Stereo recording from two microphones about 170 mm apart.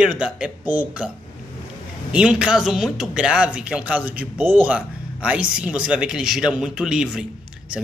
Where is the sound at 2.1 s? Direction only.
5° right (ahead or behind).